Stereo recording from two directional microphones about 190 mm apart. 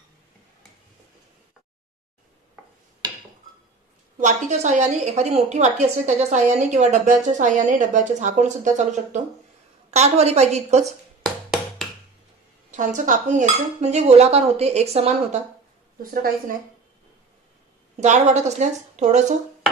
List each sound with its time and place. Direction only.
4.2 s a woman's voice: 40° right (ahead or behind)
11.2 s music: centre (ahead or behind)
12.7 s a woman's voice: 40° right (ahead or behind)
16.0 s a woman's voice: 50° right (ahead or behind)
18.0 s a woman's voice: 40° right (ahead or behind)